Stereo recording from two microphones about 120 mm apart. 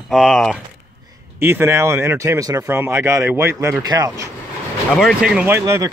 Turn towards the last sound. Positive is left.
turn(degrees=-20)  # may be behind; listen again after turning